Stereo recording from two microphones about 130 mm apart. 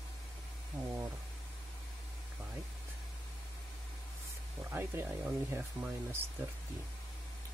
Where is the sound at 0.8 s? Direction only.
5° right (ahead or behind).